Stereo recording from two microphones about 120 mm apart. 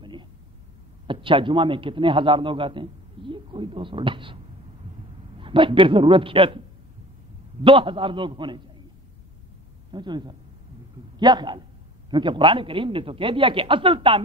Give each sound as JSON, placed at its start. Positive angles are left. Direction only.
{"t": 0.0, "sound": "a sound", "side_deg": -40}
{"t": 1.0, "sound": "a man's voice", "side_deg": -45}
{"t": 5.4, "sound": "a man's voice", "side_deg": -45}
{"t": 7.6, "sound": "a man's voice", "side_deg": -45}
{"t": 9.8, "sound": "a man's voice", "side_deg": -40}